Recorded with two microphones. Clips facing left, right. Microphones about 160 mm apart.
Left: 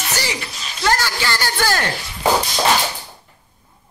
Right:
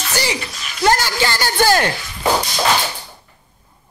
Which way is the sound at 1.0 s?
15° right (ahead or behind).